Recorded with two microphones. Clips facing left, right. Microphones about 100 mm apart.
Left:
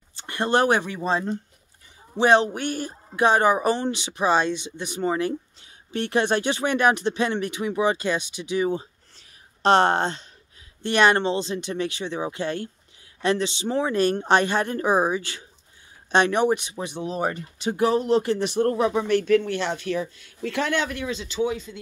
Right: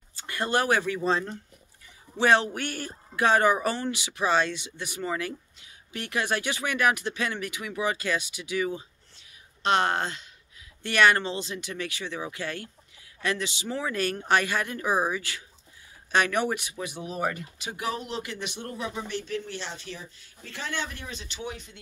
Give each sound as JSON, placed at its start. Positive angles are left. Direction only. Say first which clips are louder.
{"t": 0.1, "sound": "speech", "louder": "left 5 dB", "side_deg": 25}
{"t": 18.7, "sound": "speech", "louder": "left 11 dB", "side_deg": 65}